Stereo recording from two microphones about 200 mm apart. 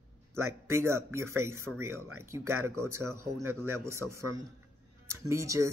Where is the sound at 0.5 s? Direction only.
15° right (ahead or behind).